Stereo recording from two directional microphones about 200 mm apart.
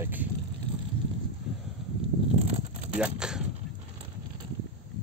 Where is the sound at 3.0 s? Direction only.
5° right (ahead or behind).